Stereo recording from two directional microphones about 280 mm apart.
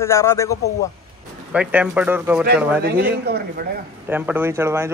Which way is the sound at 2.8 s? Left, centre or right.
Right.